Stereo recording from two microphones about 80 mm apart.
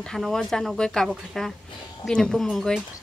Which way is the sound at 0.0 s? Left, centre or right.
Centre.